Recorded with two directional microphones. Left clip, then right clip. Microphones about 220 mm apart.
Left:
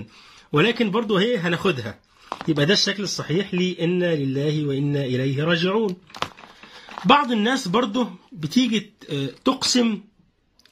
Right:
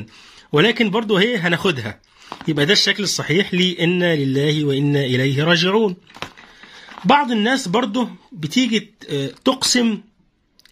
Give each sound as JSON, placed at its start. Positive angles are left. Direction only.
{"t": 0.5, "sound": "speech", "side_deg": -35}
{"t": 7.1, "sound": "speech", "side_deg": -25}